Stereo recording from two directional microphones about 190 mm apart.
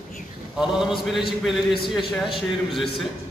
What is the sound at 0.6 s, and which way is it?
A man's voice, centre (ahead or behind).